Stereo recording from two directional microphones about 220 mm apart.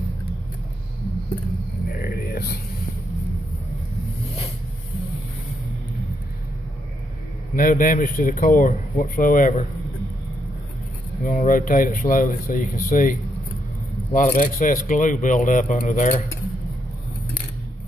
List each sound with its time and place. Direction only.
1.9 s a sound: 45° left (ahead or behind)
7.5 s speech: 40° left (ahead or behind)
11.2 s speech: 40° left (ahead or behind)